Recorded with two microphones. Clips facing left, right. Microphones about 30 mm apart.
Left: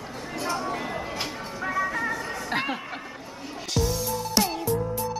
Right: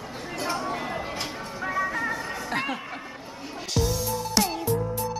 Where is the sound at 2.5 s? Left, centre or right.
Centre.